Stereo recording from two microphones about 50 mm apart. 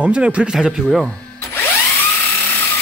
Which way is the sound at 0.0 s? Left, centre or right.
Right.